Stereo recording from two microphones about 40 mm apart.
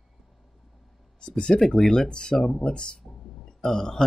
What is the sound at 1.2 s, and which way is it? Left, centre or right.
Speech, left.